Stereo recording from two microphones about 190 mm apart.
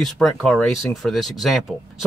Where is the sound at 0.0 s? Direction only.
Centre (ahead or behind).